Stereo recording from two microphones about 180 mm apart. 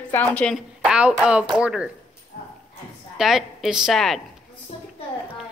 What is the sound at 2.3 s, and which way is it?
Clip-clop, 45° left (ahead or behind).